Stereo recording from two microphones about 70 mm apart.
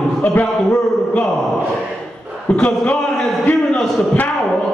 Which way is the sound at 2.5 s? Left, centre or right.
Centre.